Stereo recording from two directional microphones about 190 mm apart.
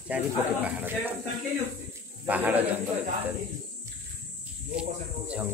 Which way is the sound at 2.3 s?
10° right (ahead or behind).